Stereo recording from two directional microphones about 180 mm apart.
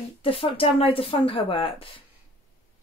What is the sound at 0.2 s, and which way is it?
Speech, 30° left (ahead or behind).